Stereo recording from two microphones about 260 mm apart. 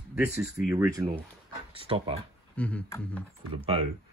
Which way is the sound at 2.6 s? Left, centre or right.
Centre.